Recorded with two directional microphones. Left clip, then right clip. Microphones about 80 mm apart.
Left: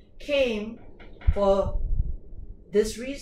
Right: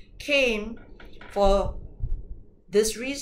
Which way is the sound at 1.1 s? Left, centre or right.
Right.